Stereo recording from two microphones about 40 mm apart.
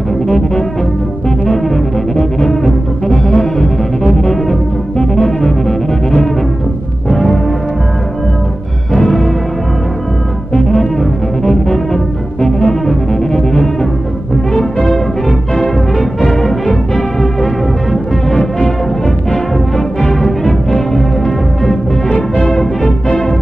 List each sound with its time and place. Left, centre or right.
2.4 s music: centre
3.3 s brass instrument: centre
7.1 s music: centre
8.9 s music: centre
10.5 s music: centre
14.5 s brass instrument: centre
15.2 s music: centre
22.4 s music: centre